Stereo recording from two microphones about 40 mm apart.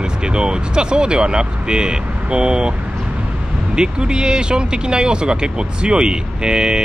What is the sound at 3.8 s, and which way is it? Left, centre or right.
Speech, right.